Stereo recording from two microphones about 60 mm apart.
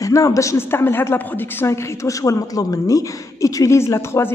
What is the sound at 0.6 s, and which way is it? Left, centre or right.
A woman's voice, left.